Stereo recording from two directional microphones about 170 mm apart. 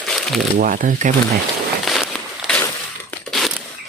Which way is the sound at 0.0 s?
Centre (ahead or behind).